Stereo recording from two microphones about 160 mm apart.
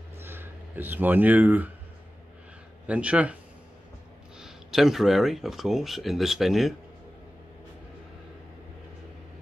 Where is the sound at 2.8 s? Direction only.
5° right (ahead or behind).